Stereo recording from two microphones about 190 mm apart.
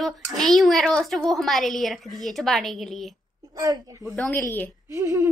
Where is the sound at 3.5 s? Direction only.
20° right (ahead or behind).